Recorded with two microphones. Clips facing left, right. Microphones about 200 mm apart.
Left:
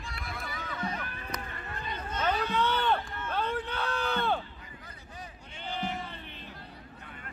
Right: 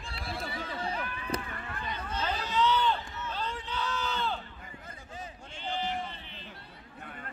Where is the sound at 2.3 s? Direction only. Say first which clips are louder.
Right 2 dB; 55° left (ahead or behind).